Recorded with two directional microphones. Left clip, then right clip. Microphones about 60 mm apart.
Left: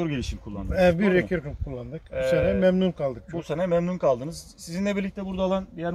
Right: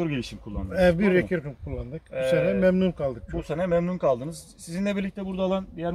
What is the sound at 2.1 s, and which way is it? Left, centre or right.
Speech, left.